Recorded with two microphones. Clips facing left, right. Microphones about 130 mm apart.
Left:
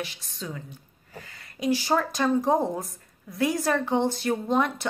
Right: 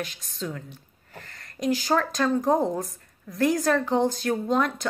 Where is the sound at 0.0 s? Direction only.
5° left (ahead or behind).